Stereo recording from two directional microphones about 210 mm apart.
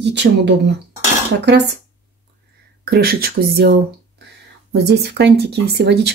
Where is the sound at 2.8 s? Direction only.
45° right (ahead or behind).